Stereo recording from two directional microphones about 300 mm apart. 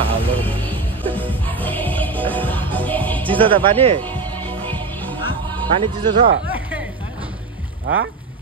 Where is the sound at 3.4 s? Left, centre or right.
Centre.